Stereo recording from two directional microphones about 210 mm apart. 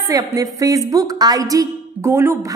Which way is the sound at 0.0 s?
15° right (ahead or behind).